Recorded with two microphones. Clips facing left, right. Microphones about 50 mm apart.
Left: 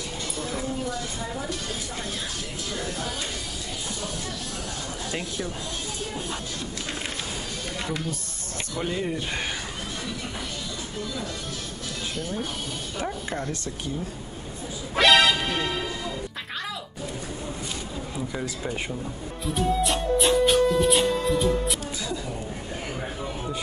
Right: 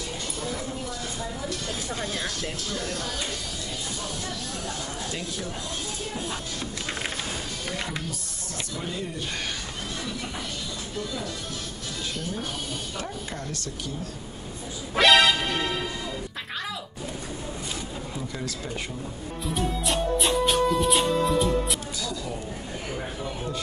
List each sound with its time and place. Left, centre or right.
13.0 s speech: left
15.0 s music: centre
18.3 s speech: centre
19.4 s music: centre